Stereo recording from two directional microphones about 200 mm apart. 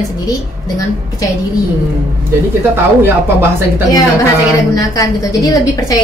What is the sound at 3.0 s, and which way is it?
Speech, 10° right (ahead or behind).